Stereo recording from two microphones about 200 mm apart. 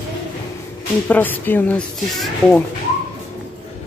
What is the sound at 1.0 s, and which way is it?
Speech, 10° left (ahead or behind).